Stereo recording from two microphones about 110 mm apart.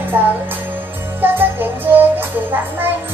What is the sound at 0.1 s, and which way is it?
Music, 20° right (ahead or behind).